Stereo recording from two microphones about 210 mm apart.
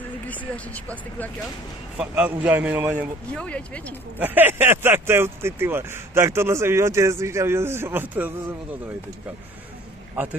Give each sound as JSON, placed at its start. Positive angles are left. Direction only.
{"t": 0.3, "sound": "speech", "side_deg": 5}
{"t": 2.0, "sound": "speech", "side_deg": -5}
{"t": 3.3, "sound": "speech", "side_deg": 5}
{"t": 4.2, "sound": "speech", "side_deg": -10}